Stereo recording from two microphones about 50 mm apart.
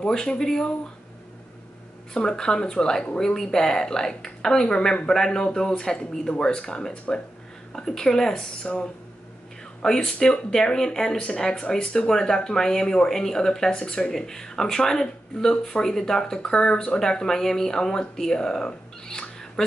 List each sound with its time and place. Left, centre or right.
0.0 s speech: centre
2.1 s speech: centre
8.6 s speech: left
19.0 s a sound: centre